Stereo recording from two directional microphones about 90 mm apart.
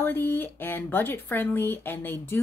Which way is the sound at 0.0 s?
20° left (ahead or behind).